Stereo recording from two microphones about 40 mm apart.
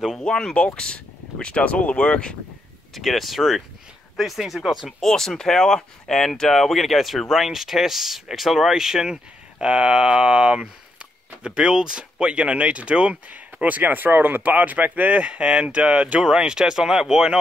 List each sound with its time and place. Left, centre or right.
0.2 s speech: centre
2.9 s speech: centre
5.0 s speech: centre
9.7 s speech: right
13.3 s speech: right
16.2 s speech: right